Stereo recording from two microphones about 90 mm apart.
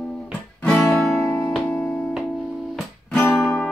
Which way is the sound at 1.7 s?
15° left (ahead or behind).